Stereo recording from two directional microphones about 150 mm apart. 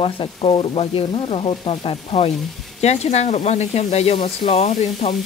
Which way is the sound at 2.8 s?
45° left (ahead or behind).